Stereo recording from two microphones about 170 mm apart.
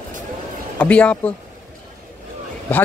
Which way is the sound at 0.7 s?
5° left (ahead or behind).